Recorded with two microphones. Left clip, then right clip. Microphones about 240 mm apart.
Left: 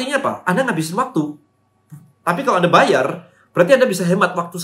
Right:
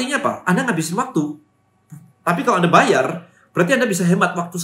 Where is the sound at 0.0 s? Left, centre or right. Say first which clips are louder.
Left 1 dB; centre.